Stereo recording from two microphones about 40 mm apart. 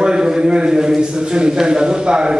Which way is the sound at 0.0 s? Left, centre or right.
Centre.